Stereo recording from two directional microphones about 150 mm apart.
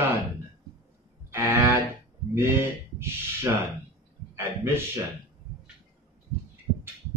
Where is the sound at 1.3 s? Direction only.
15° right (ahead or behind).